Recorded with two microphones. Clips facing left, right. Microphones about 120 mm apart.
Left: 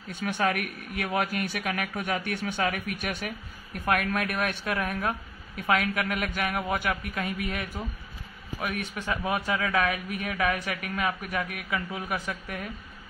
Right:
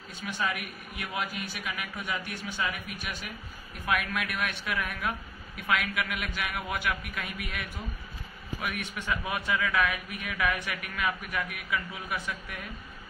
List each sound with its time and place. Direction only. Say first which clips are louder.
0.1 s speech: left 6 dB; 60° left (ahead or behind)
3.8 s a man's voice: left 4 dB; 45° left (ahead or behind)